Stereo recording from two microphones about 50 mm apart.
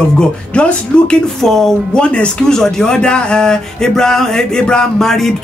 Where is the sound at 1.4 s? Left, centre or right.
Centre.